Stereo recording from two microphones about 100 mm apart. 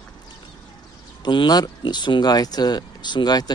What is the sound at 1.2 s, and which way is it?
Speech, 50° left (ahead or behind).